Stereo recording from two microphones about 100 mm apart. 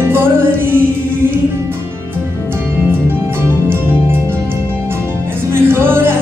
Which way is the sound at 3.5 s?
20° right (ahead or behind).